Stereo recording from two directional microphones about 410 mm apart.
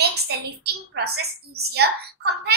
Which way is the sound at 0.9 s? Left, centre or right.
Right.